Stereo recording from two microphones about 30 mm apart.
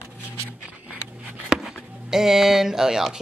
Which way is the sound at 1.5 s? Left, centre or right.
Right.